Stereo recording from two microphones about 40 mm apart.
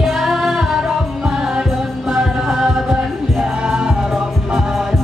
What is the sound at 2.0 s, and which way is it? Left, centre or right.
Music, centre.